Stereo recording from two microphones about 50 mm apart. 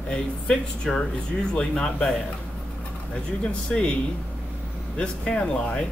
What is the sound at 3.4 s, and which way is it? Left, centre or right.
Speech, left.